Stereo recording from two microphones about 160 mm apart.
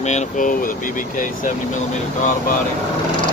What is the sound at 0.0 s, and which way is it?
Speech, 45° left (ahead or behind).